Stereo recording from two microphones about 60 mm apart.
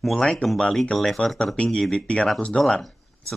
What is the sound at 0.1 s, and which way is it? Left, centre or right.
Speech, centre.